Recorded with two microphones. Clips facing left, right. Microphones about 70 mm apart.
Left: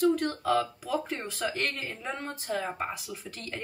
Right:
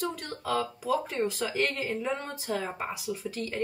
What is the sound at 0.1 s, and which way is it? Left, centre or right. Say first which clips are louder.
Speech: left 5 dB; centre.